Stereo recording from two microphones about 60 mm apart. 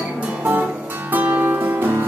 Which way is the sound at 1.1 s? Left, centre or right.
Right.